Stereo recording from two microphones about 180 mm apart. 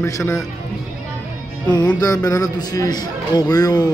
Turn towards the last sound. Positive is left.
turn(degrees=20)  # may be behind; listen again after turning